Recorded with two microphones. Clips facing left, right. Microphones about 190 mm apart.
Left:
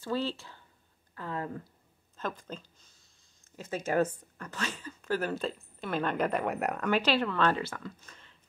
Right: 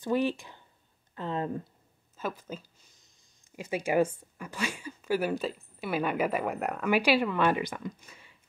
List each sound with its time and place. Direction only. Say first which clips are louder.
0.0 s speech: right 5 dB; 15° right (ahead or behind)
2.1 s a woman's voice: right 2 dB; 5° right (ahead or behind)
6.9 s a woman's voice: right 4 dB; 10° right (ahead or behind)